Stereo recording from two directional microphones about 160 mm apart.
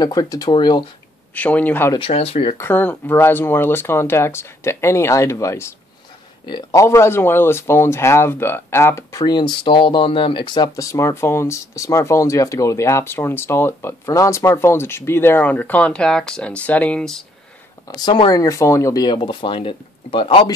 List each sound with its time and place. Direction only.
0.0 s speech: 25° left (ahead or behind)
1.3 s speech: 10° left (ahead or behind)
2.0 s speech: 35° left (ahead or behind)
2.5 s speech: 15° left (ahead or behind)
17.9 s speech: 30° left (ahead or behind)